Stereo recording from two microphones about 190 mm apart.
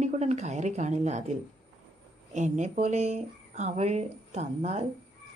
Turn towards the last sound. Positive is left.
turn(degrees=-35)  # may be behind; listen again after turning